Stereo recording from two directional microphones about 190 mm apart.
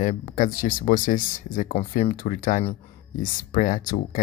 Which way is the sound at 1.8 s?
35° left (ahead or behind).